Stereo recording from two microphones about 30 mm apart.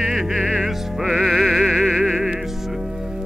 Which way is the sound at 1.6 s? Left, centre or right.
Centre.